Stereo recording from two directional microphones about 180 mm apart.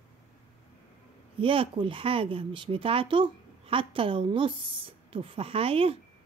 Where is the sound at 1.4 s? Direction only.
30° right (ahead or behind).